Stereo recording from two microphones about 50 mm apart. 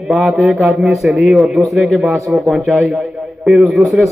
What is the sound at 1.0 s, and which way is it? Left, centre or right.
Speech, centre.